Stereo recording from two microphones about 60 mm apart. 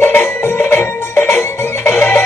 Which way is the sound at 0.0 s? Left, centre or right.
Left.